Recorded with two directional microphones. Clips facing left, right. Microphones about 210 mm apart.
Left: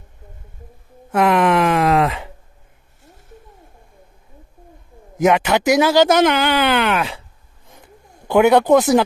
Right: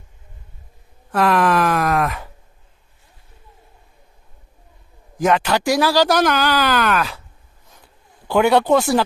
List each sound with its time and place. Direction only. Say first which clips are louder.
1.1 s speech: left 2 dB; 20° left (ahead or behind)
5.2 s speech: left 2 dB; 10° left (ahead or behind)
5.5 s speech: left 3 dB; 20° left (ahead or behind)
8.5 s speech: left 3 dB; 20° left (ahead or behind)